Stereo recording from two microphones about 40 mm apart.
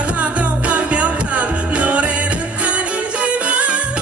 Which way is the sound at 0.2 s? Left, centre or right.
Right.